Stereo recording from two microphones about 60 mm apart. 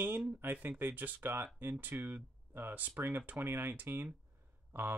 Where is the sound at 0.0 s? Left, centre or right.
Right.